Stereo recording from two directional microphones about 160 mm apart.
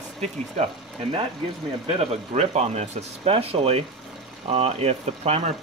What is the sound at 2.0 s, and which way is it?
Speech, 45° right (ahead or behind).